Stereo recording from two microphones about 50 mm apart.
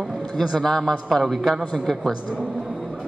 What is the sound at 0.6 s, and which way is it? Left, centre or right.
A man's voice, centre.